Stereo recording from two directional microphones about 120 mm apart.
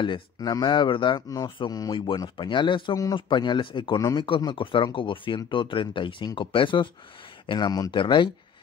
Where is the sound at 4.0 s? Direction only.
30° left (ahead or behind).